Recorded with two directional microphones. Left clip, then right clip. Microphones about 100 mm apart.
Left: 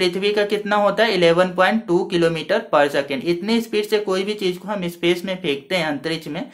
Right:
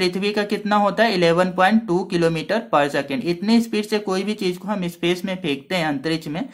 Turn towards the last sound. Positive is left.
turn(degrees=-40)  # may be behind; listen again after turning